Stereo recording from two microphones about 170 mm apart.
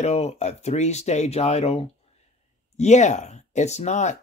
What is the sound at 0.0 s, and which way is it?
Speech, 40° left (ahead or behind).